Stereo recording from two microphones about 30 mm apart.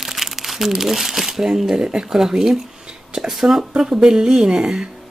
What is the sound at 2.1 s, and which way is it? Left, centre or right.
Speech, centre.